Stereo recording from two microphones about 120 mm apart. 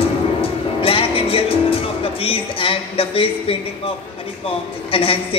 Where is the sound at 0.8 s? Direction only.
50° left (ahead or behind).